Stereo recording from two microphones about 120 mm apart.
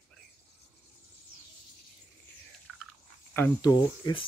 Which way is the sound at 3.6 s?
35° left (ahead or behind).